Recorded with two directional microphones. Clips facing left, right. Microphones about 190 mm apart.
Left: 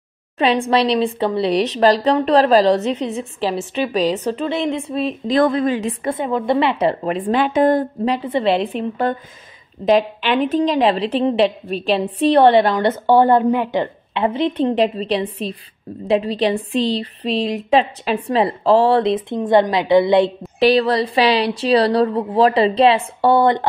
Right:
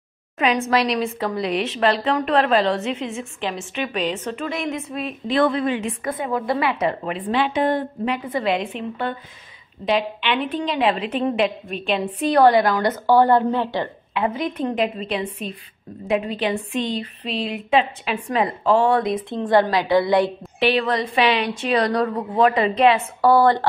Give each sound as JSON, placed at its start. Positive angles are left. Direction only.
{"t": 0.4, "sound": "speech", "side_deg": 30}
{"t": 7.2, "sound": "a woman's voice", "side_deg": 45}
{"t": 14.2, "sound": "speech", "side_deg": 30}
{"t": 19.3, "sound": "a woman's voice", "side_deg": 20}
{"t": 20.5, "sound": "speech", "side_deg": 35}